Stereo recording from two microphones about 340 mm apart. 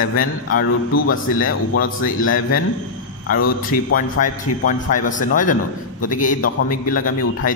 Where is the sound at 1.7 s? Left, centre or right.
Left.